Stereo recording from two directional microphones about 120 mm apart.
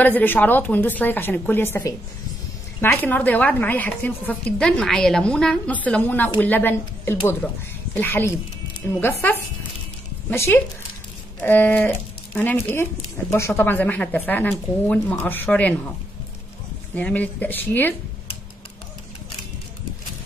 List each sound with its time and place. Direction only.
0.0 s a woman's voice: 15° left (ahead or behind)
16.9 s a woman's voice: 10° left (ahead or behind)